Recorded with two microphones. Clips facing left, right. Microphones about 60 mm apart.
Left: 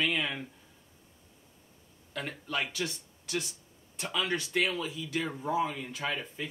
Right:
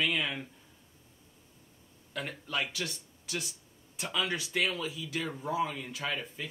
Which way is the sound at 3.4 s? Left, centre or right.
Centre.